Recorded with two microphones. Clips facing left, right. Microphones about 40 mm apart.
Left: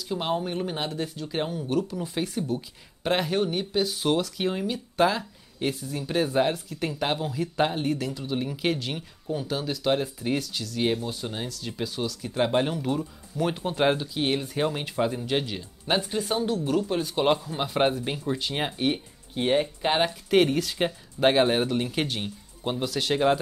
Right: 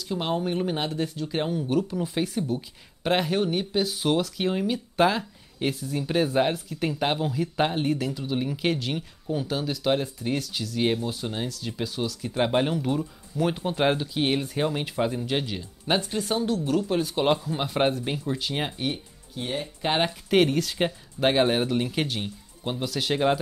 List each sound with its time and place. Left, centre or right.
0.1 s speech: centre
19.3 s speech: left
19.8 s speech: centre